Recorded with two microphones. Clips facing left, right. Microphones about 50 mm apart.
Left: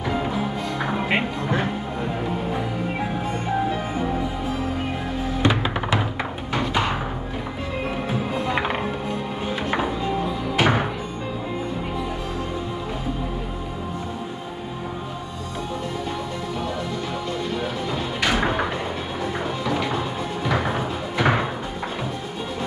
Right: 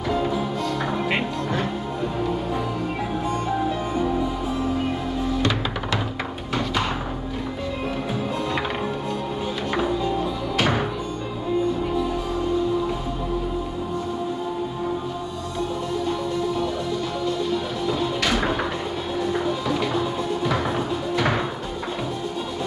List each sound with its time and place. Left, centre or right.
0.1 s music: centre
5.4 s music: left
8.1 s music: centre
17.8 s music: centre